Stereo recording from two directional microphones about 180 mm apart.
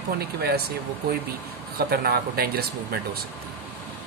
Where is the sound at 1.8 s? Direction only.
55° right (ahead or behind).